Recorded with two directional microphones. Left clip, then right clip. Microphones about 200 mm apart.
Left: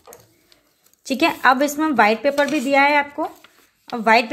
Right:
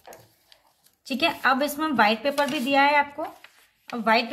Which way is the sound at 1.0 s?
30° left (ahead or behind).